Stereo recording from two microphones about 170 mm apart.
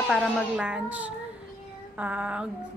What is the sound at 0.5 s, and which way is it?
Speech, 5° right (ahead or behind).